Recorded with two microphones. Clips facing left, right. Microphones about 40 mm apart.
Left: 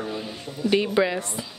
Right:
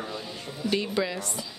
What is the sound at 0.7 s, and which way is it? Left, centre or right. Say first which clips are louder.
Speech: left 7 dB; left.